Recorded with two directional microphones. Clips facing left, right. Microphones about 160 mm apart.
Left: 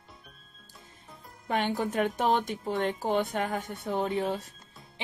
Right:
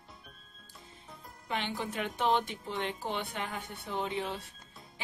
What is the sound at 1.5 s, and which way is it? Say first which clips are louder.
A woman's voice: left 7 dB; 50° left (ahead or behind).